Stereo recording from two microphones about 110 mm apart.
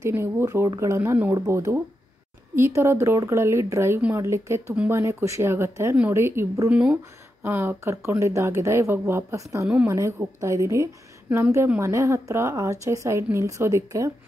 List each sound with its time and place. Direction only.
0.0 s speech: 20° right (ahead or behind)
1.3 s speech: 30° right (ahead or behind)